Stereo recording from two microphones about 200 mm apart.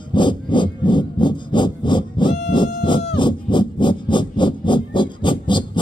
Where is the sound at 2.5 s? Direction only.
25° left (ahead or behind).